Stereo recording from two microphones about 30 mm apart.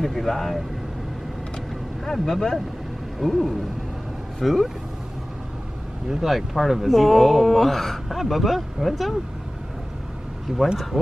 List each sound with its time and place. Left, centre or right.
0.0 s speech: centre
2.2 s speech: centre
3.2 s speech: centre
6.0 s speech: centre
10.5 s speech: centre